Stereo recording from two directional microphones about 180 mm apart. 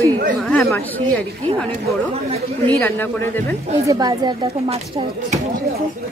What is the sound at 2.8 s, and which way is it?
Speech, 10° left (ahead or behind).